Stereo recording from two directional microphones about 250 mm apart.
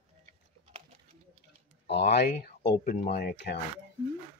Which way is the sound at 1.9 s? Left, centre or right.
Left.